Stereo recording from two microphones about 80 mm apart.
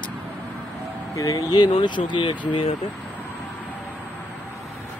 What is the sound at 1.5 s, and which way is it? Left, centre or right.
Speech, left.